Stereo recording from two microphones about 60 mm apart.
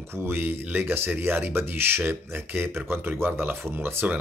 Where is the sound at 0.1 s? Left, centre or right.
Right.